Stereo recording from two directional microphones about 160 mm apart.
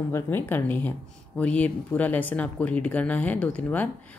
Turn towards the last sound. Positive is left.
turn(degrees=10)  # may be behind; listen again after turning